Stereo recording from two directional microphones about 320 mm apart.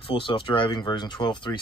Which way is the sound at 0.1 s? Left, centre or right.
Centre.